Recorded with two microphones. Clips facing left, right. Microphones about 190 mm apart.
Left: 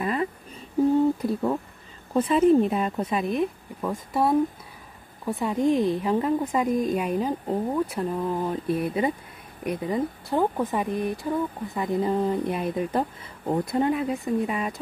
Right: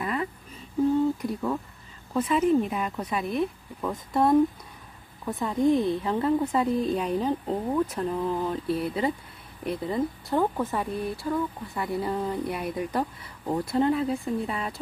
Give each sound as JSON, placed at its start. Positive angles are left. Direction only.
{"t": 0.0, "sound": "a sound", "side_deg": 25}
{"t": 2.1, "sound": "speech", "side_deg": 30}
{"t": 3.8, "sound": "a woman's voice", "side_deg": 5}